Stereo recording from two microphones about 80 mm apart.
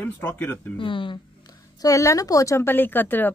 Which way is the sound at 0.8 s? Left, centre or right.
Left.